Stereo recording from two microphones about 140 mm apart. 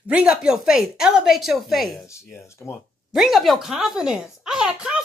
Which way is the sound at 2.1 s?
20° left (ahead or behind).